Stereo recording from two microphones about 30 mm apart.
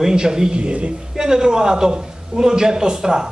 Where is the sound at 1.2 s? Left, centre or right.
Right.